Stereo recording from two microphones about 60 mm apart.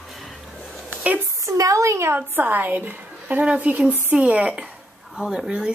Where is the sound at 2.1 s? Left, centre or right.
Right.